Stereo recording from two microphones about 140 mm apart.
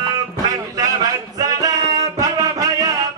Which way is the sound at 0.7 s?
25° right (ahead or behind).